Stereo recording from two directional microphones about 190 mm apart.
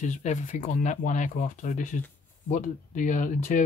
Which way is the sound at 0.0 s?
40° left (ahead or behind).